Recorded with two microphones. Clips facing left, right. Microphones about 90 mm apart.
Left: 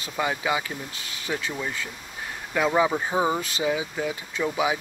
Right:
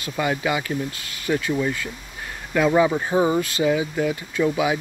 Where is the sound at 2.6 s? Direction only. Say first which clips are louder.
Right 4 dB; 10° left (ahead or behind).